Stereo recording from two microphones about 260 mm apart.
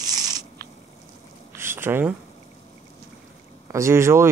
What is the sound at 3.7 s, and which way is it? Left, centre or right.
Speech, centre.